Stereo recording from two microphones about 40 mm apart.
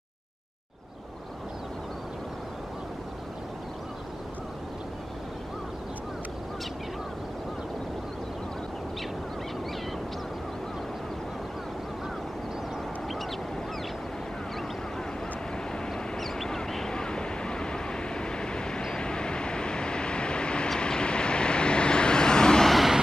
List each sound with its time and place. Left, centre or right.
16.4 s vehicle: centre
22.7 s vehicle: centre